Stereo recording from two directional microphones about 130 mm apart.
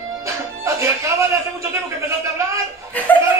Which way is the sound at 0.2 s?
20° right (ahead or behind).